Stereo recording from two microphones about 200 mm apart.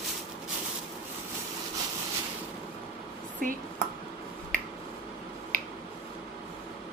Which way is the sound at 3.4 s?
45° right (ahead or behind).